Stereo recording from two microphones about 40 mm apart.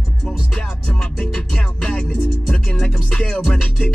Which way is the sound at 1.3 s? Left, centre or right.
Centre.